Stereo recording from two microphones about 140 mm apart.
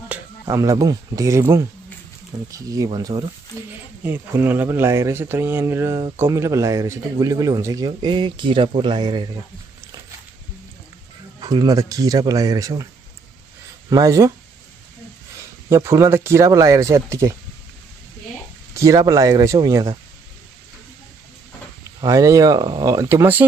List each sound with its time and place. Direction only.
0.1 s speech: 20° right (ahead or behind)
4.0 s speech: 15° right (ahead or behind); by 9.3 s 30° right (ahead or behind)
11.4 s speech: 25° right (ahead or behind)
13.8 s speech: 25° right (ahead or behind)
15.3 s speech: 20° right (ahead or behind)
18.8 s speech: 25° right (ahead or behind)
22.0 s speech: 25° right (ahead or behind)